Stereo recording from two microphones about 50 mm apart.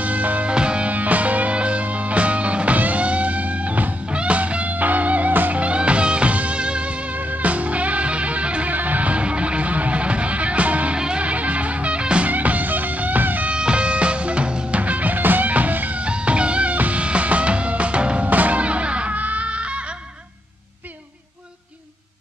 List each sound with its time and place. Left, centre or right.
0.0 s music: right
5.6 s music: right
12.3 s music: right
13.5 s music: right
16.0 s music: right